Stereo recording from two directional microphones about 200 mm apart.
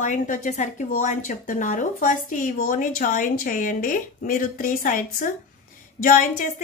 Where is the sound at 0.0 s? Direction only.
40° left (ahead or behind).